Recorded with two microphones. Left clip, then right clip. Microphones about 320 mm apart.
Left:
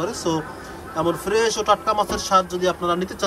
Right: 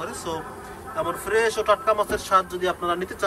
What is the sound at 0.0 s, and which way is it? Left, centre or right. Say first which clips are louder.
A man's voice: left 6 dB; centre.